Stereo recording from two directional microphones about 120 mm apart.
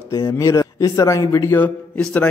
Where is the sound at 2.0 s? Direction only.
5° left (ahead or behind).